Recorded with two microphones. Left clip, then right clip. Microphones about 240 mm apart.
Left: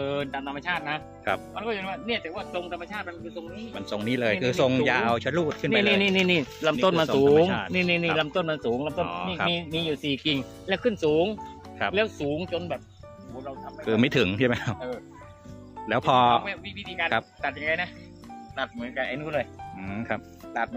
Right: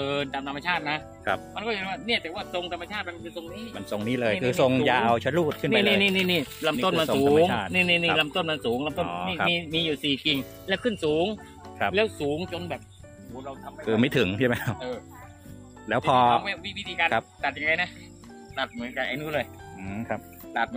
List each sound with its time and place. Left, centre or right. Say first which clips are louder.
0.0 s speech: right 1 dB; centre
5.7 s speech: even; left
7.4 s speech: right 2 dB; centre
7.7 s speech: right 2 dB; left
8.8 s speech: even; centre
10.0 s speech: right 2 dB; left
13.4 s speech: left 1 dB; centre
19.8 s speech: left 1 dB; centre